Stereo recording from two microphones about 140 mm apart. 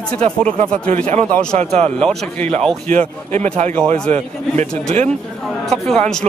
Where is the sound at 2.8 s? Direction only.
60° right (ahead or behind).